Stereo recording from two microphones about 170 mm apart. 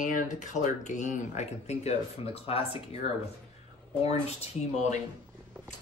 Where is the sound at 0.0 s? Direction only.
50° left (ahead or behind).